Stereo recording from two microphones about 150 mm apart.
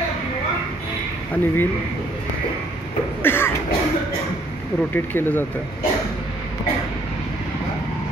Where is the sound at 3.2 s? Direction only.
15° left (ahead or behind).